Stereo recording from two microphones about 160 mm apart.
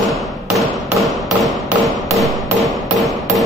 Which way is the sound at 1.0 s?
Centre (ahead or behind).